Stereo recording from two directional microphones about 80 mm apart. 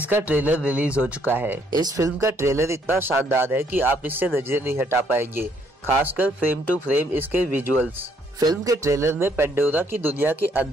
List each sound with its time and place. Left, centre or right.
0.1 s speech: centre
2.0 s speech: right
8.4 s speech: right
8.7 s speech: right